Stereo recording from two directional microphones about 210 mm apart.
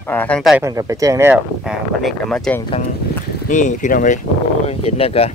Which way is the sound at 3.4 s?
35° left (ahead or behind).